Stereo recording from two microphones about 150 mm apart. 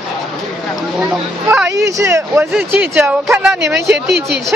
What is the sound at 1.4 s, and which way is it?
Speech, 15° right (ahead or behind).